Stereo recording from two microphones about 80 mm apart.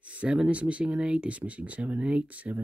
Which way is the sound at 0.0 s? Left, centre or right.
Centre.